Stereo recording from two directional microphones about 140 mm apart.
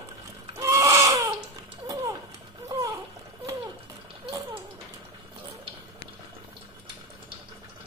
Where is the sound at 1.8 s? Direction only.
25° right (ahead or behind).